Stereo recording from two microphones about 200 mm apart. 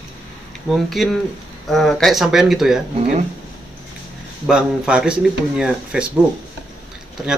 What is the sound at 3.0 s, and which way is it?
Speech, 35° right (ahead or behind).